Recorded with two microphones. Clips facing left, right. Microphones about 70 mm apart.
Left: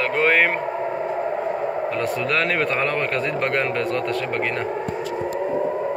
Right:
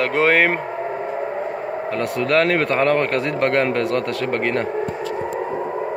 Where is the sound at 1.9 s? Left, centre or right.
Right.